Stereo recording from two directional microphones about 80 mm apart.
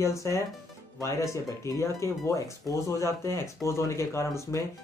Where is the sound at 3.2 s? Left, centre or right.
Left.